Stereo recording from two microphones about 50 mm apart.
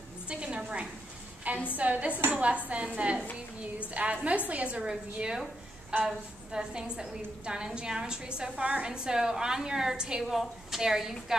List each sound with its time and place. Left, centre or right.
0.3 s a sound: centre
1.5 s a woman's voice: right
4.8 s a woman's voice: centre